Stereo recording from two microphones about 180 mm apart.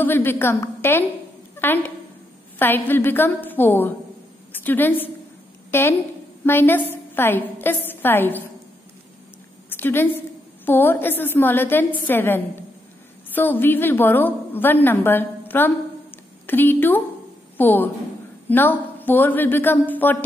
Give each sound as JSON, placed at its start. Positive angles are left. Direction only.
{"t": 0.0, "sound": "a woman's voice", "side_deg": 10}
{"t": 9.7, "sound": "a woman's voice", "side_deg": 10}